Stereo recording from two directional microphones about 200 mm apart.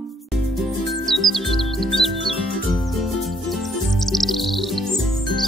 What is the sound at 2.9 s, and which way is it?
Chirp, centre (ahead or behind).